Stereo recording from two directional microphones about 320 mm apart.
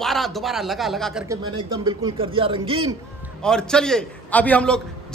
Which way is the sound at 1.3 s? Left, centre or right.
Centre.